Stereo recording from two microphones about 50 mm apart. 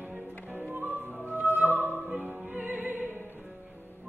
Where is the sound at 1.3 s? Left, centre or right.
Right.